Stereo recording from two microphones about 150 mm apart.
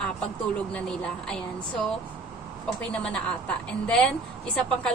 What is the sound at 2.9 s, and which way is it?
A woman's voice, 5° left (ahead or behind).